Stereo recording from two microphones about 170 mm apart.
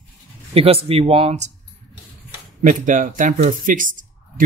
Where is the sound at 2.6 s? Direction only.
50° right (ahead or behind).